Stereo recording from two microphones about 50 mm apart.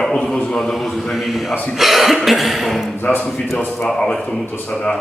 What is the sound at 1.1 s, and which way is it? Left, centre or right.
Cough, centre.